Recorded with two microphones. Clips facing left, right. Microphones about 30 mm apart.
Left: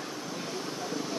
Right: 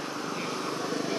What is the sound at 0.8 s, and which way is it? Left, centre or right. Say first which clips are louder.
Vehicle: right 3 dB; right.